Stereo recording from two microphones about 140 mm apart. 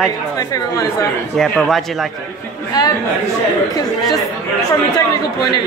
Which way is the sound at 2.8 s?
25° left (ahead or behind).